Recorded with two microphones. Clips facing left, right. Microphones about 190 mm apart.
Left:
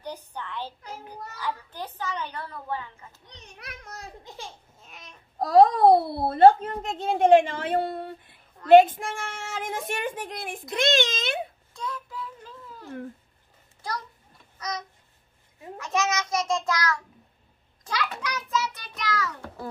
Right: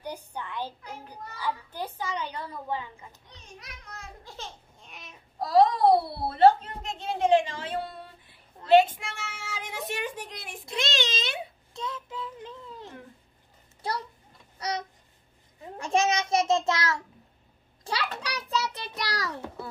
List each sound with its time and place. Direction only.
0.0 s a sound: 10° right (ahead or behind)
1.4 s a child's voice: 10° right (ahead or behind)
3.3 s a child's voice: 65° left (ahead or behind)
4.2 s laughter: 20° left (ahead or behind)
4.7 s babbling: centre (ahead or behind)
5.4 s a child's voice: 50° left (ahead or behind)
11.7 s child singing: 25° right (ahead or behind)
15.8 s a child's voice: 30° right (ahead or behind)